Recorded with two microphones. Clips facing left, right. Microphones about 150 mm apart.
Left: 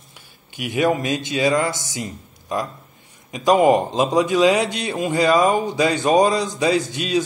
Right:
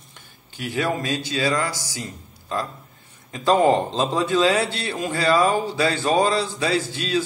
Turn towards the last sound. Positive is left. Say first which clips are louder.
# left 3 dB
turn(degrees=15)  # may be behind; listen again after turning